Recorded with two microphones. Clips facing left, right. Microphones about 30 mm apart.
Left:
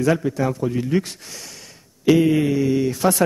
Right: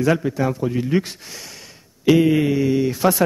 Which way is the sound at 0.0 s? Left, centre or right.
Centre.